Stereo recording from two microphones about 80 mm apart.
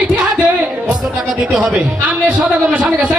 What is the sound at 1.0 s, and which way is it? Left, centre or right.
A man's voice, centre.